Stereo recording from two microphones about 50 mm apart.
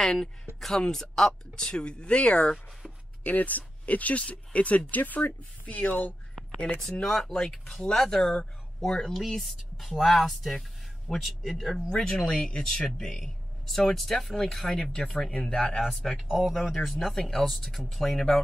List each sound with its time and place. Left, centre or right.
0.0 s speech: centre
3.3 s speech: left
6.8 s speech: centre
17.1 s speech: centre